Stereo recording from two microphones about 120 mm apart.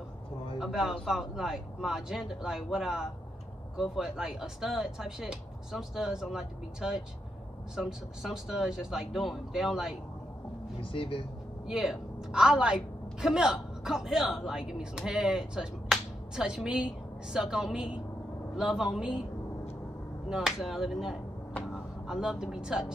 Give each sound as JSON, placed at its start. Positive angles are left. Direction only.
{"t": 0.6, "sound": "speech", "side_deg": -5}
{"t": 10.8, "sound": "speech", "side_deg": 50}
{"t": 11.6, "sound": "a woman's voice", "side_deg": -5}
{"t": 20.2, "sound": "speech", "side_deg": -5}